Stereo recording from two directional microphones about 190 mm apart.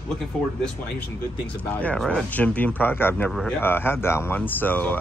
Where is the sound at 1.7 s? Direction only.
5° left (ahead or behind).